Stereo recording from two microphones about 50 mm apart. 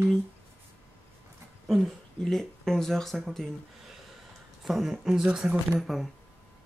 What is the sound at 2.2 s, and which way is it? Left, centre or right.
Speech, centre.